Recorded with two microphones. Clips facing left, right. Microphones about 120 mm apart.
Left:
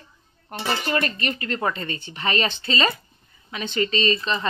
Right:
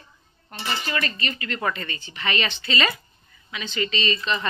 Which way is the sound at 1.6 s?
25° left (ahead or behind).